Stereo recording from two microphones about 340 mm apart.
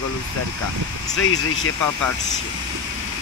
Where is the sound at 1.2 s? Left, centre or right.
Left.